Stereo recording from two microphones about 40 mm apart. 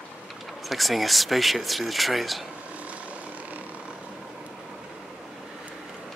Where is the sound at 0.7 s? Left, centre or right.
Centre.